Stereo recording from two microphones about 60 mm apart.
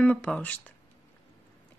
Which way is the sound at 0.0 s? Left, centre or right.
Left.